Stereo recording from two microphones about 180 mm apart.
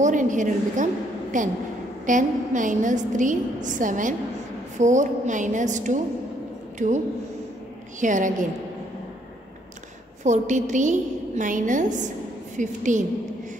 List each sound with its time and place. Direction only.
0.0 s a woman's voice: 45° right (ahead or behind)
8.0 s a woman's voice: 45° right (ahead or behind)
10.2 s a woman's voice: 40° right (ahead or behind)